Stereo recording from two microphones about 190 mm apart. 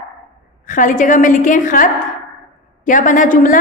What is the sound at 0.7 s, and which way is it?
A woman's voice, 40° left (ahead or behind).